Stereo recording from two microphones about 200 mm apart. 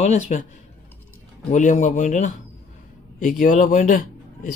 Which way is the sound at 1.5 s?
35° left (ahead or behind).